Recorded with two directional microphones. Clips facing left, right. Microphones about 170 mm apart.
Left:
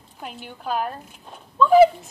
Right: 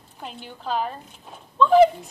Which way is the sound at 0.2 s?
5° left (ahead or behind).